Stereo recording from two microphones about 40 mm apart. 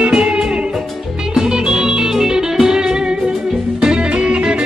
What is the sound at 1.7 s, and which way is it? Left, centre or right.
Music, centre.